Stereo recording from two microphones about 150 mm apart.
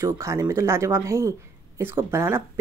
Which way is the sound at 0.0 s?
20° right (ahead or behind).